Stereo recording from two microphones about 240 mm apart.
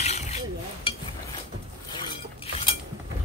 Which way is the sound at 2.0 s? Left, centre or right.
Left.